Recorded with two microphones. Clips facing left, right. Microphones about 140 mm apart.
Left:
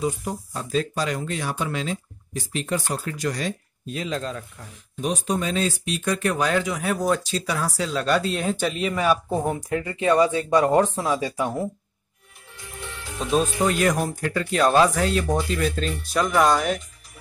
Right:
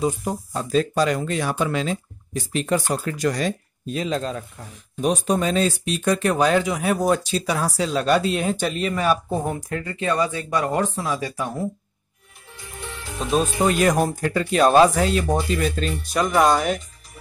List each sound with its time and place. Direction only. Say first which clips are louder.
0.0 s speech: right 3 dB; 40° right (ahead or behind); by 3.0 s 75° right (ahead or behind)
3.1 s speech: right 4 dB; 55° right (ahead or behind)
3.9 s speech: right 4 dB; 25° right (ahead or behind)
5.0 s speech: right 4 dB; 45° right (ahead or behind); by 6.8 s 25° right (ahead or behind)
7.0 s speech: right 3 dB; 15° right (ahead or behind)
7.4 s speech: right 3 dB; 30° right (ahead or behind)
7.7 s speech: right 3 dB; 20° right (ahead or behind)
8.5 s speech: right 1 dB; 5° left (ahead or behind)
9.5 s speech: left 2 dB; 20° left (ahead or behind)
13.2 s speech: right 1 dB; 5° right (ahead or behind)
13.6 s speech: right 2 dB; 20° right (ahead or behind)
13.8 s speech: right 3 dB; 35° right (ahead or behind)
14.3 s speech: right 3 dB; 20° right (ahead or behind)